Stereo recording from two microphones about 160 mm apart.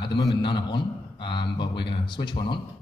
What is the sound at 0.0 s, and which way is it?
A man's voice, 30° left (ahead or behind).